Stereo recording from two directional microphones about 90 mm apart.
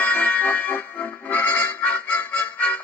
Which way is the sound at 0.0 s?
20° left (ahead or behind).